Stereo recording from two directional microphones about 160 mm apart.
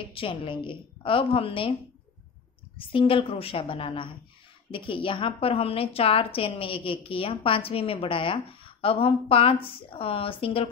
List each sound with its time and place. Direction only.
0.1 s a woman's voice: 30° left (ahead or behind)
2.8 s a woman's voice: 35° left (ahead or behind)